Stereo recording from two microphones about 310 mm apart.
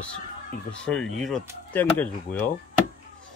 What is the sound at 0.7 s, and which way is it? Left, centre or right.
Speech, centre.